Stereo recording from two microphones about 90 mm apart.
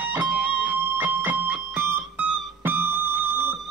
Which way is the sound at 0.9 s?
20° right (ahead or behind).